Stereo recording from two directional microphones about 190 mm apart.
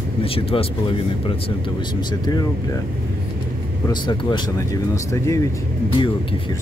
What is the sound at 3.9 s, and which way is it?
Speech, 25° left (ahead or behind).